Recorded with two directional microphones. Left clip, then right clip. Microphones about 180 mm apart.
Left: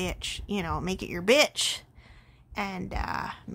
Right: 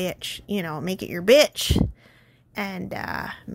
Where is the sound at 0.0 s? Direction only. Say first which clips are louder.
Right 4 dB; 15° right (ahead or behind).